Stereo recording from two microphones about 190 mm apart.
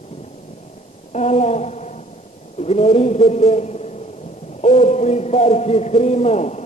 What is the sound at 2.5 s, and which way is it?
A man's voice, 35° left (ahead or behind).